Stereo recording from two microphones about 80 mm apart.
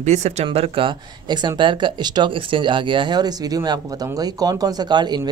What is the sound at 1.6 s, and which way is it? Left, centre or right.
Speech, right.